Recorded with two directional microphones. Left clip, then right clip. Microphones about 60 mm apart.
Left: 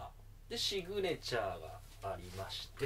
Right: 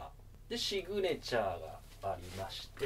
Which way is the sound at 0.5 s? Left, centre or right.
Centre.